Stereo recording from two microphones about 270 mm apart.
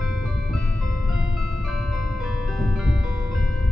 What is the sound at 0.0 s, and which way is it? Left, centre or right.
Music, left.